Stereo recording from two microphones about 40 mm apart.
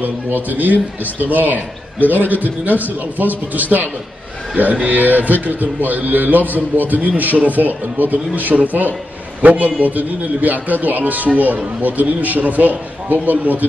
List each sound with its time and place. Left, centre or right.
0.0 s a man's voice: right